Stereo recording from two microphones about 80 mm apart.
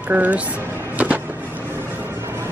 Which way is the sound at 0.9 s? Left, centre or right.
Centre.